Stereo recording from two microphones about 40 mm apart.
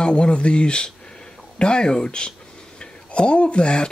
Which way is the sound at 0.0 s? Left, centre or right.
Left.